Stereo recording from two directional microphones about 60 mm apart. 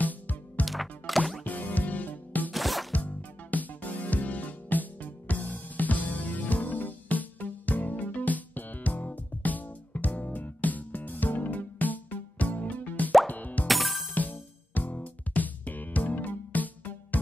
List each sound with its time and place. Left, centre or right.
0.0 s music: left
0.7 s music: centre
1.4 s music: left
2.5 s zipper: centre
2.9 s music: left
13.7 s music: centre
14.1 s music: left